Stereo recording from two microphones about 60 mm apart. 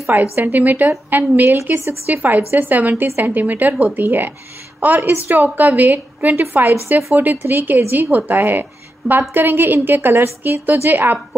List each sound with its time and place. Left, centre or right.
0.1 s a woman's voice: right
7.0 s speech: right
7.2 s a woman's voice: right